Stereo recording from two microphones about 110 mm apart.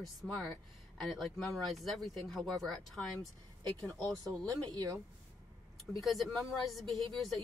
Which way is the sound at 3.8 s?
5° left (ahead or behind).